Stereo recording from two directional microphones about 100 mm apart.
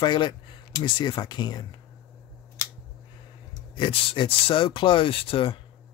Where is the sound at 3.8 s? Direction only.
60° left (ahead or behind).